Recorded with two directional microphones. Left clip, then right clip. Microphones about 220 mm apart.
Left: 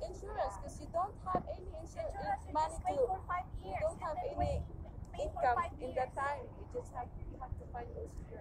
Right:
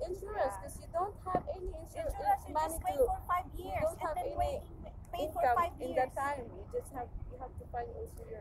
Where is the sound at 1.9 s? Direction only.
55° right (ahead or behind).